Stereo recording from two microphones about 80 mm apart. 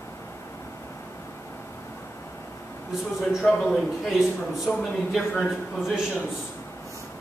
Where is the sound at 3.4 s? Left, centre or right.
Centre.